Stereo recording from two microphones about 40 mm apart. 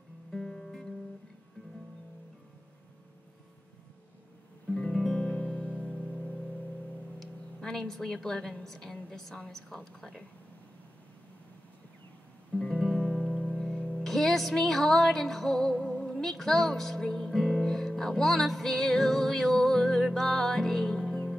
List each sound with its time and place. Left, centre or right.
0.3 s music: centre
4.9 s music: centre
5.2 s music: left
7.2 s music: centre
8.6 s speech: centre
12.8 s music: centre
13.3 s music: left
14.0 s music: centre
16.2 s speech: centre
17.6 s music: centre